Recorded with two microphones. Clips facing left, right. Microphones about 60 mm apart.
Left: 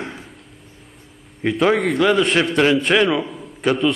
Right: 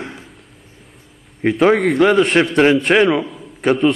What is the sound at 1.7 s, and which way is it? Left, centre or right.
Speech, right.